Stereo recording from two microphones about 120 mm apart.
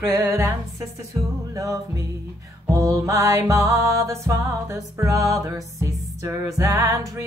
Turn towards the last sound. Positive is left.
turn(degrees=-30)  # may be behind; listen again after turning